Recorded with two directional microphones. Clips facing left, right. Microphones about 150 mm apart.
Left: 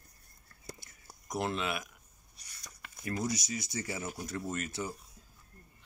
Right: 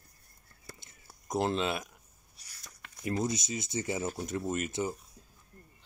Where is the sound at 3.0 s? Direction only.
25° right (ahead or behind).